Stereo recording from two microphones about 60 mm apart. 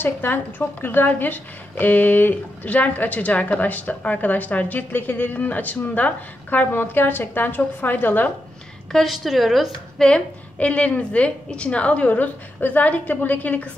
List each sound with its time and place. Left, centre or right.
0.0 s a woman's voice: left
8.9 s a woman's voice: centre
9.9 s a woman's voice: centre